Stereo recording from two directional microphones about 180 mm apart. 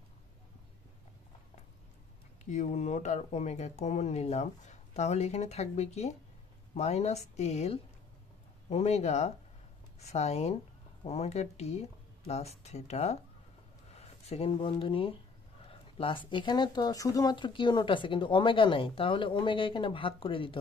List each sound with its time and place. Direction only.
2.4 s speech: 40° left (ahead or behind)